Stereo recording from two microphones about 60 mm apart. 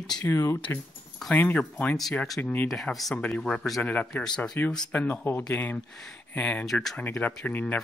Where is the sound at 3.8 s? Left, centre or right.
Left.